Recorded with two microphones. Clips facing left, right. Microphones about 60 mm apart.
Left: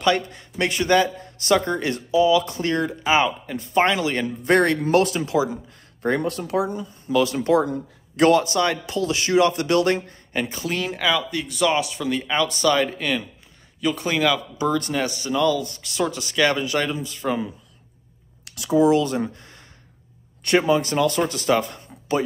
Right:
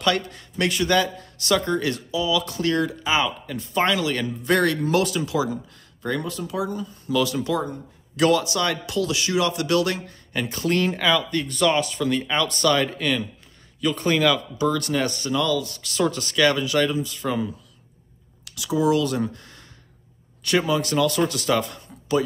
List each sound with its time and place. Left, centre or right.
0.0 s speech: left
6.0 s speech: left
6.7 s speech: left
10.5 s speech: centre
14.6 s speech: left
15.0 s speech: centre
15.4 s speech: left
18.5 s speech: left